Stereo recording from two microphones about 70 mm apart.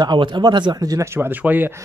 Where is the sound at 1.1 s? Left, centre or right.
Right.